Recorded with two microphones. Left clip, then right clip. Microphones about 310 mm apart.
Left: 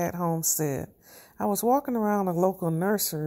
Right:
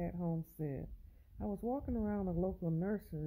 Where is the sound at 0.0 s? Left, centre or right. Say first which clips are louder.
Left 15 dB; centre.